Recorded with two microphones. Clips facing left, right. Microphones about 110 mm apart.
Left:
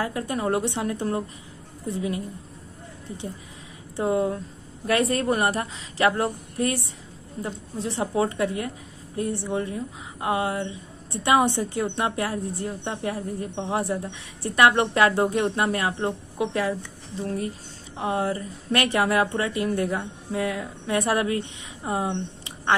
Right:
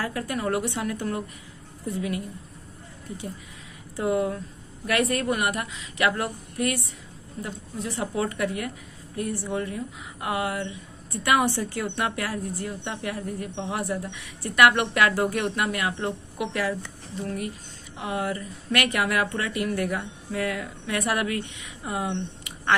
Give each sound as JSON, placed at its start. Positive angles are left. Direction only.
{"t": 0.0, "sound": "a woman's voice", "side_deg": 25}
{"t": 3.9, "sound": "a woman's voice", "side_deg": 25}
{"t": 17.9, "sound": "a woman's voice", "side_deg": 30}